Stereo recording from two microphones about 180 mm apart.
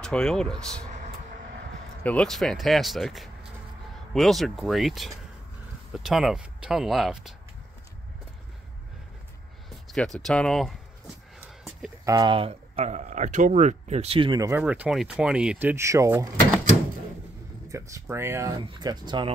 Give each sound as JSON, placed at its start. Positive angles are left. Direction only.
{"t": 0.0, "sound": "speech", "side_deg": 5}
{"t": 2.0, "sound": "speech", "side_deg": 5}
{"t": 9.7, "sound": "speech", "side_deg": 0}
{"t": 12.0, "sound": "speech", "side_deg": -20}
{"t": 14.6, "sound": "speech", "side_deg": -5}
{"t": 17.6, "sound": "speech", "side_deg": -15}